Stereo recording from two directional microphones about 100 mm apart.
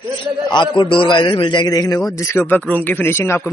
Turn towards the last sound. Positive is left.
turn(degrees=25)  # may be behind; listen again after turning